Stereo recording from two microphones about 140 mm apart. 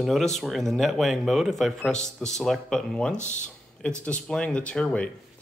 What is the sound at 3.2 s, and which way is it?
Speech, 60° left (ahead or behind).